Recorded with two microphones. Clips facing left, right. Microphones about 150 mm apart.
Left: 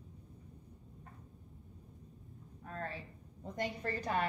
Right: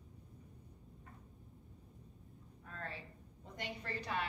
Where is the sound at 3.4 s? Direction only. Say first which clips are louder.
Left 8 dB; 45° left (ahead or behind).